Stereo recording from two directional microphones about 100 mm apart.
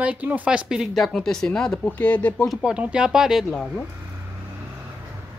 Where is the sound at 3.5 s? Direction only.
5° left (ahead or behind).